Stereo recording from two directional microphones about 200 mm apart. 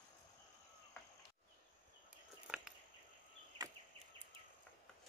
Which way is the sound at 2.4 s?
5° right (ahead or behind).